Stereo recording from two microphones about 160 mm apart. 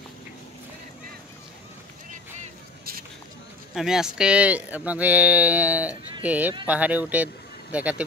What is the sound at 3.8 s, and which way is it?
Speech, 5° right (ahead or behind).